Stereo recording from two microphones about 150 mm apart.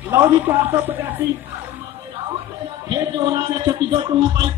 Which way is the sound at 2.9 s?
25° right (ahead or behind).